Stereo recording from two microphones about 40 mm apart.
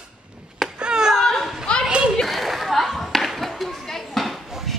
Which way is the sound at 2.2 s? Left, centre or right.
Centre.